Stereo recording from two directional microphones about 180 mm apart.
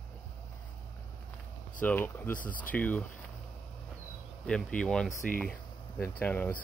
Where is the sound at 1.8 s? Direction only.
10° left (ahead or behind).